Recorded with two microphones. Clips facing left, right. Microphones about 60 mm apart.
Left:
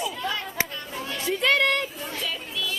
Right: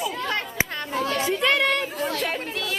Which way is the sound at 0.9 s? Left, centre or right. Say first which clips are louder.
Right 8 dB; right.